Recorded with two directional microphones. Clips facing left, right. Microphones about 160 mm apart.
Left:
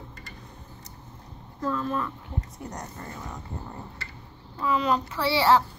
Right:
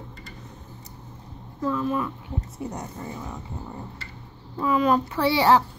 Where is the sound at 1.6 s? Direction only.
10° right (ahead or behind).